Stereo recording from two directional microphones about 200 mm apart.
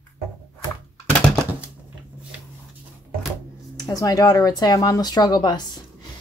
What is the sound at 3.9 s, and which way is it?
Speech, 20° left (ahead or behind).